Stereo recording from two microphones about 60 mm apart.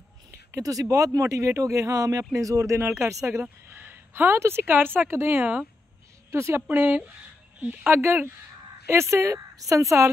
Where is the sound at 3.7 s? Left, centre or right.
Right.